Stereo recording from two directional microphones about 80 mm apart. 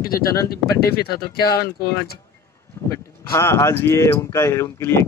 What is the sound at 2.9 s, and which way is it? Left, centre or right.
Speech, left.